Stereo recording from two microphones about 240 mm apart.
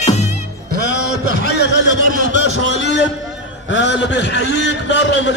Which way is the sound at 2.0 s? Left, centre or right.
Right.